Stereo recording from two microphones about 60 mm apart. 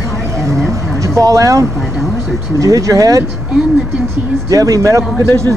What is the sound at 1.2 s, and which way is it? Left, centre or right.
Speech, right.